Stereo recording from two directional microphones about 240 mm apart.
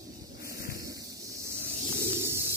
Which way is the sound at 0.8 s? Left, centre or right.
Centre.